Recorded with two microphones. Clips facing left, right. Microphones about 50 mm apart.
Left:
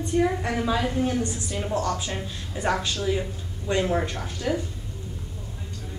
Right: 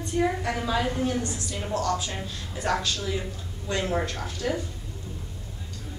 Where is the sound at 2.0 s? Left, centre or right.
Centre.